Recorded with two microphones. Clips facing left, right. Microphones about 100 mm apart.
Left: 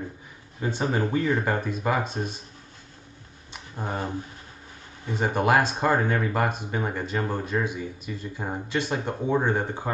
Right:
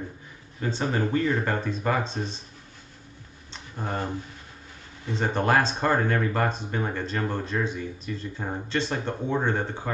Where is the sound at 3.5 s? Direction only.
15° left (ahead or behind).